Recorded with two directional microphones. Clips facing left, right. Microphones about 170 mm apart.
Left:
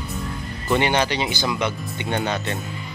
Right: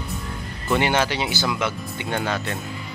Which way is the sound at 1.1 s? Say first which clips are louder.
Left 1 dB; 5° right (ahead or behind).